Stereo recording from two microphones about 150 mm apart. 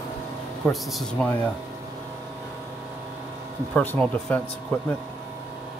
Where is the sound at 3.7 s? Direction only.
10° left (ahead or behind).